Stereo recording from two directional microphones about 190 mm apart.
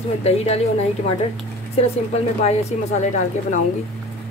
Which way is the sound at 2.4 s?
35° left (ahead or behind).